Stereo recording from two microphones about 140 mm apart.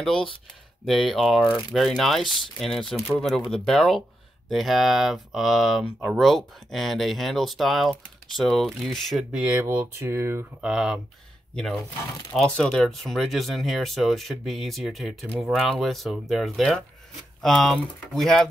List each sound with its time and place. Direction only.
0.0 s speech: 5° left (ahead or behind)
9.4 s speech: 10° right (ahead or behind)
10.7 s speech: 5° right (ahead or behind)
12.4 s speech: 5° left (ahead or behind)